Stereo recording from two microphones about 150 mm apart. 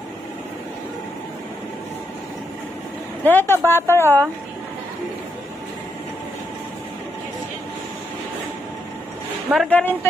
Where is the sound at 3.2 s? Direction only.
15° left (ahead or behind).